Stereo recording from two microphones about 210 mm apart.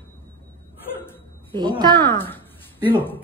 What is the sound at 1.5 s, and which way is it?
Speech, 20° right (ahead or behind).